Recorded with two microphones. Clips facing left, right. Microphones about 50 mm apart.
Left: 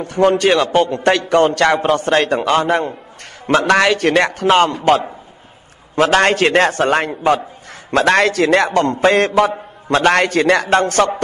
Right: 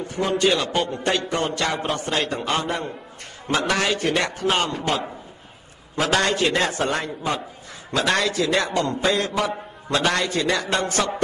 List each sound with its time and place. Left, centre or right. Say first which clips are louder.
0.0 s a man's voice: left 8 dB; left
6.0 s a man's voice: left 7 dB; left